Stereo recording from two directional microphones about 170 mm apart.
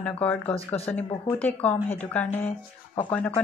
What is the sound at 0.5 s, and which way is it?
Speech, 35° left (ahead or behind).